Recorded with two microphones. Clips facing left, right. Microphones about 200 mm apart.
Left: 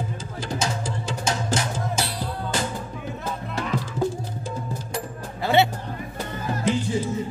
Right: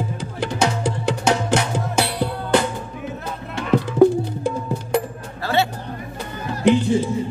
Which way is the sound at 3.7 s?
65° right (ahead or behind).